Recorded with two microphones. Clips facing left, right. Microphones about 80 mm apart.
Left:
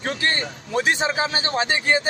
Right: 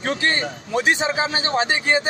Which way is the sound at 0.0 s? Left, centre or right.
Right.